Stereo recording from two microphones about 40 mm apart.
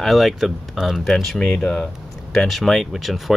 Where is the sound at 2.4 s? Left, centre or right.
Centre.